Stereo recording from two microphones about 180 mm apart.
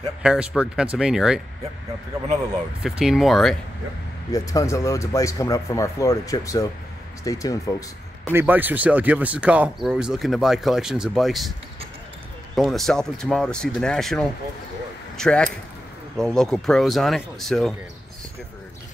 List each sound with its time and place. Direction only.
0.2 s speech: 5° right (ahead or behind)
2.8 s speech: centre (ahead or behind)
4.3 s speech: 20° left (ahead or behind)
8.3 s speech: 10° right (ahead or behind)
12.5 s speech: centre (ahead or behind)